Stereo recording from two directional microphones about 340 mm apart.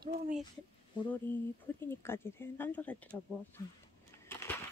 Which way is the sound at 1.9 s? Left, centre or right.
Centre.